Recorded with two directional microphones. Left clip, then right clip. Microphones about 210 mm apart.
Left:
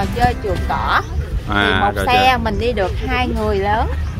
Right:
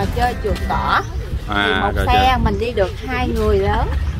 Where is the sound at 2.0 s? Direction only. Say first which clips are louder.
Left 1 dB; 50° left (ahead or behind).